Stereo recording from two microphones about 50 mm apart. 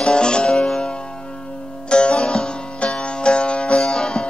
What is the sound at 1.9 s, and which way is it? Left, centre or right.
Music, centre.